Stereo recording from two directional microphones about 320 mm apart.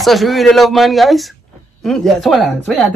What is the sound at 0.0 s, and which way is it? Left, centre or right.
Speech, centre.